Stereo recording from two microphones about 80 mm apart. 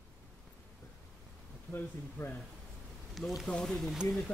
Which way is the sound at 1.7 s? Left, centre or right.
Left.